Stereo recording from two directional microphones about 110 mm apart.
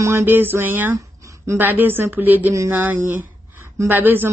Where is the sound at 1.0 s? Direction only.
30° right (ahead or behind).